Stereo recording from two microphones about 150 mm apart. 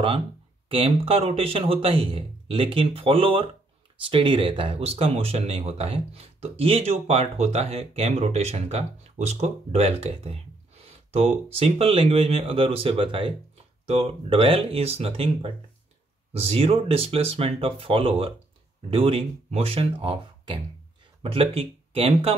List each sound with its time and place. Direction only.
0.7 s speech: 40° right (ahead or behind)
10.9 s a sound: 40° right (ahead or behind)
11.5 s speech: 40° right (ahead or behind)